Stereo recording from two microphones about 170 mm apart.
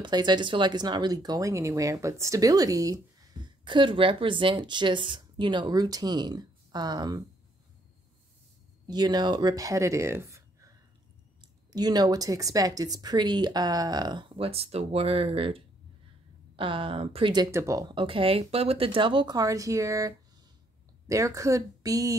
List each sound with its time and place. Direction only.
0.0 s speech: 25° right (ahead or behind)
8.8 s speech: 25° right (ahead or behind)